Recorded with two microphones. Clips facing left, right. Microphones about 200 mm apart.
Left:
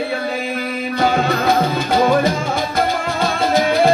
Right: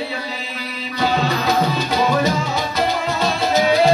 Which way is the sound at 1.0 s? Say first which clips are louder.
Left 2 dB; 50° left (ahead or behind).